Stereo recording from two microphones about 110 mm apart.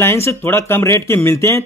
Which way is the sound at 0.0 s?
25° left (ahead or behind).